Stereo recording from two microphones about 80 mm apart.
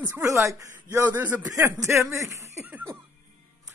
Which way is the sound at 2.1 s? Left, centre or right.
Right.